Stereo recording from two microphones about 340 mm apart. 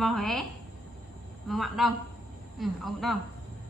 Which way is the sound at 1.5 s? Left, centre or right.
Centre.